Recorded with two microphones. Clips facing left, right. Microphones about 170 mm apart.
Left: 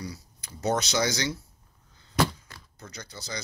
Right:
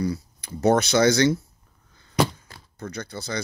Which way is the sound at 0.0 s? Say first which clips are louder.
Right 12 dB; 60° right (ahead or behind).